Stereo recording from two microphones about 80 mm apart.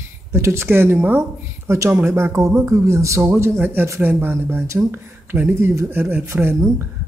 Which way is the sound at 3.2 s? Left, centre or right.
Right.